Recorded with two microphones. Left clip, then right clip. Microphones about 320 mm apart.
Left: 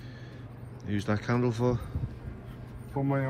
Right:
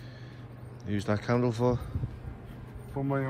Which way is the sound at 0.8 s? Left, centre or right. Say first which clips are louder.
Right 1 dB; centre.